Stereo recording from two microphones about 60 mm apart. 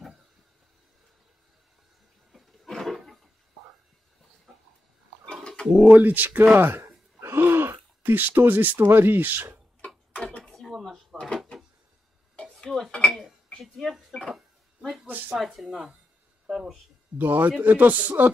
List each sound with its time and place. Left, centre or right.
2.3 s a sound: centre
5.8 s a man's voice: right
7.2 s throat clearing: right
8.7 s a man's voice: right
10.4 s drawer open or close: centre
12.6 s dishes: centre
14.1 s a sound: centre
15.0 s speech: right
15.3 s speech: centre
16.4 s a sound: centre
17.2 s a man's voice: right